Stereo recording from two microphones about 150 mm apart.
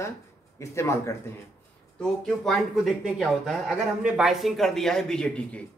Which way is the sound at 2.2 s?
Centre (ahead or behind).